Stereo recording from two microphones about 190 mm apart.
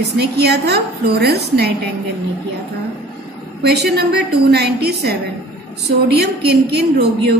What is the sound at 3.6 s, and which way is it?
A woman's voice, 60° right (ahead or behind).